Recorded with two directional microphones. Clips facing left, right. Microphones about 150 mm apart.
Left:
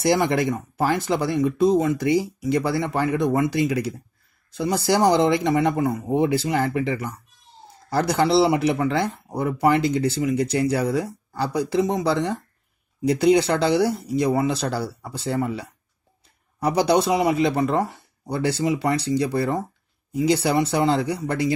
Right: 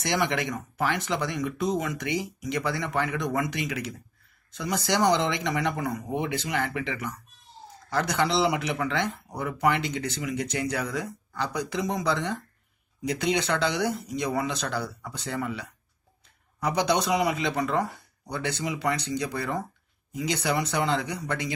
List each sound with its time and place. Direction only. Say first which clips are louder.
0.0 s speech: left 7 dB; 35° left (ahead or behind)